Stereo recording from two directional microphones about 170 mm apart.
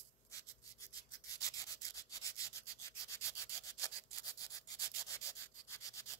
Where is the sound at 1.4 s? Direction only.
20° left (ahead or behind).